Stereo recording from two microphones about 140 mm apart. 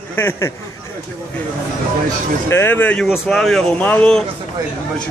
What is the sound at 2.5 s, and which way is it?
Speech, 15° left (ahead or behind).